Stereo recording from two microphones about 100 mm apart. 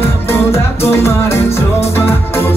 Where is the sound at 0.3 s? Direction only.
25° left (ahead or behind).